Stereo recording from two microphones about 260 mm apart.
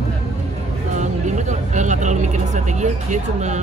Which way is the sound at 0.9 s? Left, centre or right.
Right.